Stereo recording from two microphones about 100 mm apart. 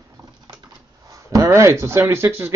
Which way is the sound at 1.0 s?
35° right (ahead or behind).